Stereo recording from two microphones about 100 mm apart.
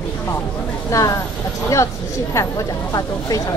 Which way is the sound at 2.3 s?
35° left (ahead or behind).